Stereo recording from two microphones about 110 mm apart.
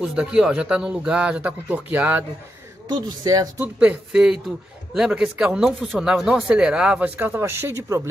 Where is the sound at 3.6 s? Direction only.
15° right (ahead or behind).